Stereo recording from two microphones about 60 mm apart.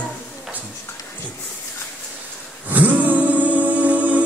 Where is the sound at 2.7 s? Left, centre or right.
Right.